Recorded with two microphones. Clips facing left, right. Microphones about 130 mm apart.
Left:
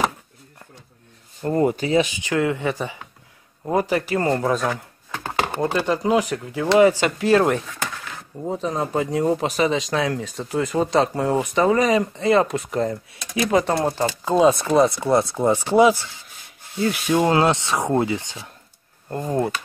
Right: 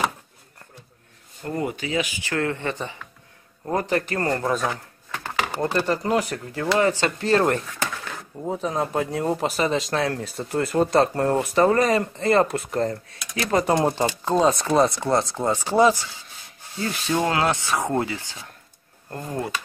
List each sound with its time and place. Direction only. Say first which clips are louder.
1.4 s speech: left 7 dB; 35° left (ahead or behind)
2.2 s chopping: left 4 dB; 15° left (ahead or behind)
4.5 s speech: left 2 dB; centre (ahead or behind)
5.3 s a sound: left 3 dB; 45° left (ahead or behind)
5.6 s speech: left 1 dB; 5° left (ahead or behind)
6.8 s chopping: left 6 dB; 15° left (ahead or behind)
7.1 s speech: left 3 dB; 5° left (ahead or behind)
13.7 s speech: even; 20° right (ahead or behind)
14.2 s speech: left 4 dB; 5° left (ahead or behind)
14.6 s chopping: left 2 dB; centre (ahead or behind)
16.8 s speech: left 4 dB; 10° left (ahead or behind)